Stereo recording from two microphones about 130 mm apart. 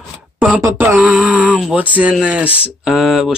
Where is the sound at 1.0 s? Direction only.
10° right (ahead or behind).